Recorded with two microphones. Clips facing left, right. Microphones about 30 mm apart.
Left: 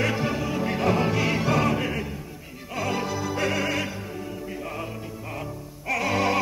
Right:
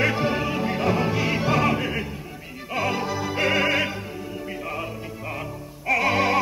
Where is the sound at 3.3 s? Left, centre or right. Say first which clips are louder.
Right 6 dB; centre.